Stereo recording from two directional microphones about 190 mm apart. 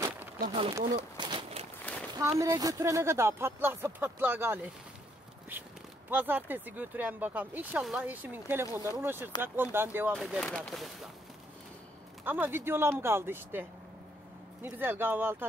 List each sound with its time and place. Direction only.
0.5 s speech: 30° right (ahead or behind)
1.1 s a sound: 25° right (ahead or behind)
2.1 s speech: 15° right (ahead or behind)
6.0 s speech: 10° right (ahead or behind)
10.1 s speech: centre (ahead or behind)
12.3 s speech: 10° right (ahead or behind)